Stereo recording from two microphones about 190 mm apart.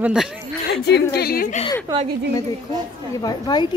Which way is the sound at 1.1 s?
55° left (ahead or behind).